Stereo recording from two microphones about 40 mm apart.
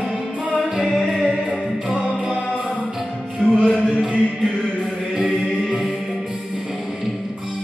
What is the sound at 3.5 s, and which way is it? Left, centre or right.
Music, centre.